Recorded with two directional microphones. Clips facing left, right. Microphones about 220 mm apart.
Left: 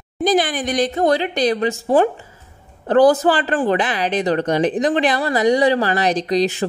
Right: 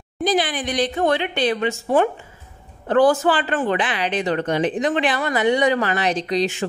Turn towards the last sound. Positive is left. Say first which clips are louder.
# left 3 dB
turn(degrees=40)  # may be behind; listen again after turning